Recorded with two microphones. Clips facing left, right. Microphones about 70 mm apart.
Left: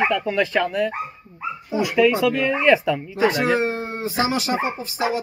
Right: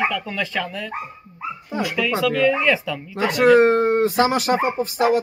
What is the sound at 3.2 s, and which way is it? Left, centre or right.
Speech, right.